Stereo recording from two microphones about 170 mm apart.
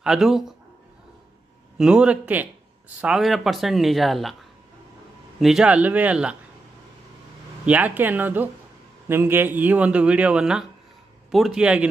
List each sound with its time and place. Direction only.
0.0 s speech: 5° right (ahead or behind)
1.8 s speech: 5° right (ahead or behind)
5.4 s a man's voice: 5° right (ahead or behind)
7.6 s a man's voice: 10° right (ahead or behind)